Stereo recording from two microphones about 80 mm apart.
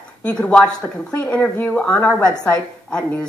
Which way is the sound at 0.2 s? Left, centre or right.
Centre.